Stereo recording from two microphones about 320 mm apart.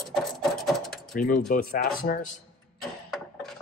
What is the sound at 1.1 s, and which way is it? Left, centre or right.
Speech, left.